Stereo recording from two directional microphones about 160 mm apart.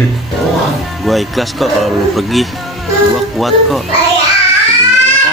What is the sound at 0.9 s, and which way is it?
A man's voice, centre (ahead or behind).